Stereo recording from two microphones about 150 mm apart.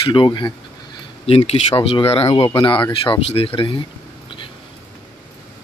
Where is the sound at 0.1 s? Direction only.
30° left (ahead or behind).